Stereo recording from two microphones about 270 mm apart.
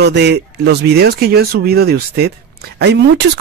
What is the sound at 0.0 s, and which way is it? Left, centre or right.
Speech, right.